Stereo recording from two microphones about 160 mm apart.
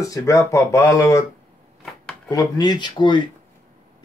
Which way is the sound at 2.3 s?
25° left (ahead or behind).